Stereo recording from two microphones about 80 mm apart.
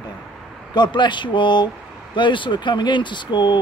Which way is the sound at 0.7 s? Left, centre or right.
Left.